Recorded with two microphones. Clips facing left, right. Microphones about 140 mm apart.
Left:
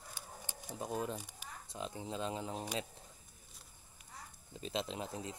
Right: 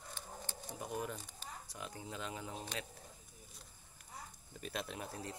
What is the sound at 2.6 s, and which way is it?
Speech, 10° left (ahead or behind).